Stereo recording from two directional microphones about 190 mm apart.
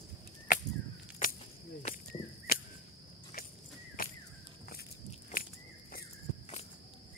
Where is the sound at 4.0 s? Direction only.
50° left (ahead or behind).